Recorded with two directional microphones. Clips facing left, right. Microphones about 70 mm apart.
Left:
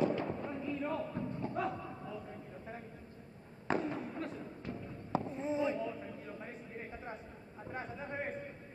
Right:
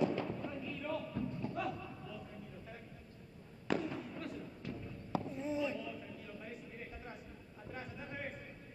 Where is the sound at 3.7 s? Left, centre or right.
Left.